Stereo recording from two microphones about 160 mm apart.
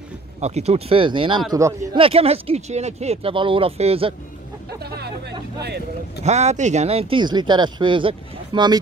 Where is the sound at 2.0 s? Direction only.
40° right (ahead or behind).